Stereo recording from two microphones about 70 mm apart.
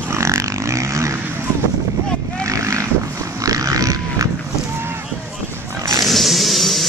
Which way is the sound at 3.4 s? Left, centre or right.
Right.